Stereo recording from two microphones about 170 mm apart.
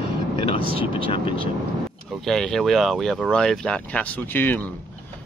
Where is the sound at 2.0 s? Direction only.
Centre (ahead or behind).